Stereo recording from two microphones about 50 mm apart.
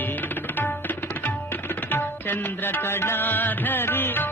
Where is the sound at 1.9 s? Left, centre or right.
Left.